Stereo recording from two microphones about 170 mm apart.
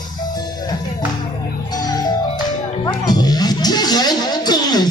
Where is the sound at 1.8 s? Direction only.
25° left (ahead or behind).